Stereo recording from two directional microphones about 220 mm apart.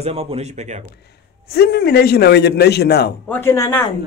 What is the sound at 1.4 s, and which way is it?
A man's voice, 45° left (ahead or behind).